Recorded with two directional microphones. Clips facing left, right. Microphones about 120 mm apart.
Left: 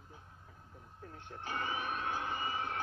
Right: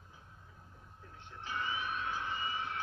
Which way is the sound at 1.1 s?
50° left (ahead or behind).